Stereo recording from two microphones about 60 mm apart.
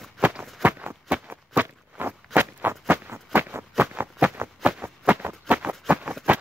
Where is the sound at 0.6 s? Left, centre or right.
Right.